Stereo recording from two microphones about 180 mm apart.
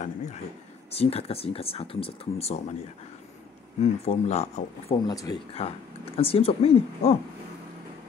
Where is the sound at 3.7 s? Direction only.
40° left (ahead or behind).